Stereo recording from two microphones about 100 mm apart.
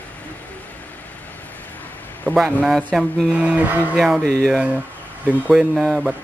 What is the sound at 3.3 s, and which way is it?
Speech, 10° right (ahead or behind).